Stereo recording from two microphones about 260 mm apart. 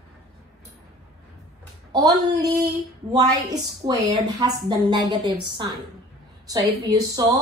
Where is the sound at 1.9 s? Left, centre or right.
Centre.